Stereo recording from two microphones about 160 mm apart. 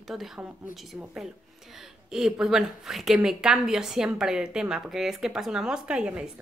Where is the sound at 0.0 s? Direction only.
Centre (ahead or behind).